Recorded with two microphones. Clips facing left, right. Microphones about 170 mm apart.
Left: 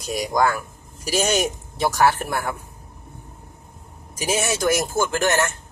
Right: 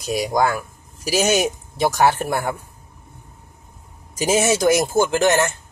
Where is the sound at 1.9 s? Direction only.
20° right (ahead or behind).